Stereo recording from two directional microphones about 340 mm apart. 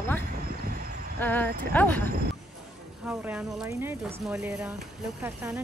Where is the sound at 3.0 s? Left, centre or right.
Centre.